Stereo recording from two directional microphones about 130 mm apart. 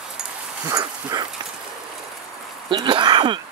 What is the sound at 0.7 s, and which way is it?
Dog, 30° right (ahead or behind).